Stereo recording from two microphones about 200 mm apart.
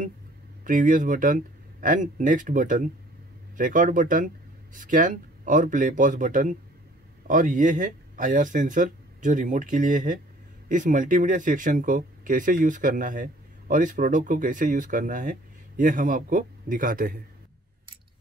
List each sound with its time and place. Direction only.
0.7 s speech: 40° right (ahead or behind)